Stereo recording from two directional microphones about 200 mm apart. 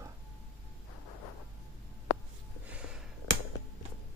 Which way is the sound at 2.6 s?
5° right (ahead or behind).